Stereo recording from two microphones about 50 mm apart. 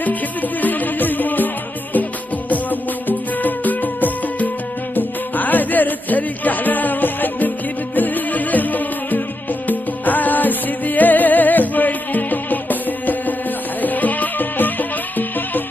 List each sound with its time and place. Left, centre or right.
0.0 s music: left
2.5 s music: left